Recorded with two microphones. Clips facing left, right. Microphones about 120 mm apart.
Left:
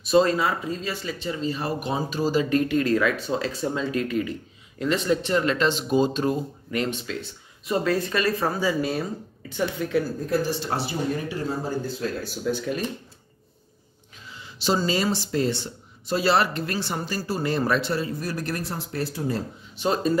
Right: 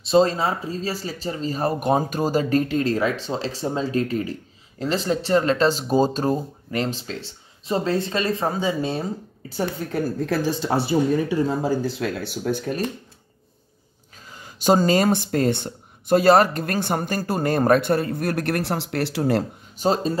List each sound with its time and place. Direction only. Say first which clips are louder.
0.0 s speech: right 2 dB; 30° right (ahead or behind); by 2.4 s 50° right (ahead or behind)
2.5 s speech: right 1 dB; 30° right (ahead or behind)
9.5 s speech: left 1 dB; 40° right (ahead or behind)
10.0 s speech: right 2 dB; 75° right (ahead or behind)
11.6 s speech: right 5 dB; 90° right; by 12.7 s 55° right (ahead or behind)
14.3 s speech: right 6 dB; 45° right (ahead or behind); by 19.4 s 75° right (ahead or behind)
19.8 s speech: right 2 dB; 30° right (ahead or behind)